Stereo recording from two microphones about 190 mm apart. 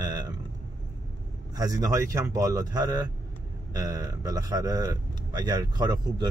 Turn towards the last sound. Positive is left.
turn(degrees=-20)  # may be behind; listen again after turning